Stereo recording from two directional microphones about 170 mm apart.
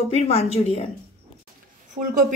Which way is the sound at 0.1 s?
35° left (ahead or behind).